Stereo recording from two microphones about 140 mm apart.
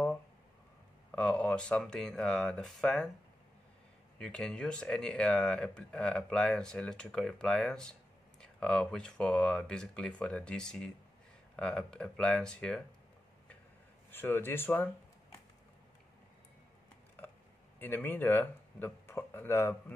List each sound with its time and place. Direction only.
1.1 s speech: 10° left (ahead or behind)
4.2 s speech: 5° left (ahead or behind)
14.1 s speech: 15° left (ahead or behind)
17.7 s speech: 15° left (ahead or behind)